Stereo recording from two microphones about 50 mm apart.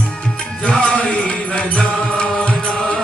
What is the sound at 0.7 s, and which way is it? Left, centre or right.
Chant, left.